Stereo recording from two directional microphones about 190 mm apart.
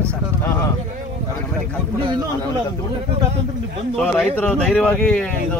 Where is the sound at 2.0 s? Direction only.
25° right (ahead or behind).